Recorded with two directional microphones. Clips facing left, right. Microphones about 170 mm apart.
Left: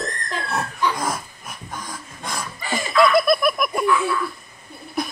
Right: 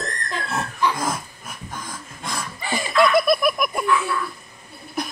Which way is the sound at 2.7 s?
Centre (ahead or behind).